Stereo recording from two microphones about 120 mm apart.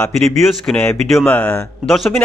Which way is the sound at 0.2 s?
Centre (ahead or behind).